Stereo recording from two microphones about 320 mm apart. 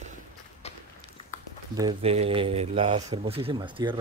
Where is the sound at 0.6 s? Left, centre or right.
Centre.